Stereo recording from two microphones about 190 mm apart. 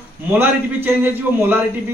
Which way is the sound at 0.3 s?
10° right (ahead or behind).